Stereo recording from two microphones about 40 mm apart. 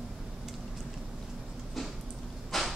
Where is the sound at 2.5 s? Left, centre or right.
Centre.